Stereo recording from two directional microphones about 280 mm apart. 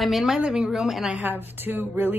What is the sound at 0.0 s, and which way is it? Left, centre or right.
A woman's voice, centre.